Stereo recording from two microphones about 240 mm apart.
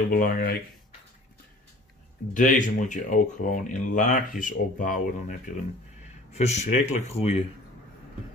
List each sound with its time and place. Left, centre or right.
0.1 s speech: left
2.3 s speech: left
6.3 s speech: left